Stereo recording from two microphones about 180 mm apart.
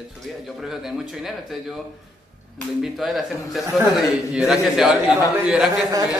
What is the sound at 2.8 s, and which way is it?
A man's voice, centre (ahead or behind).